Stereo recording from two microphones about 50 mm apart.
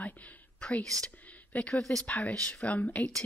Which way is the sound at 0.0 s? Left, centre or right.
Left.